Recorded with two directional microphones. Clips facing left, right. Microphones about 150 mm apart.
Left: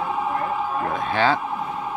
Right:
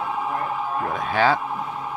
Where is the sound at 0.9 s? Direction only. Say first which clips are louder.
Right 1 dB; 5° right (ahead or behind).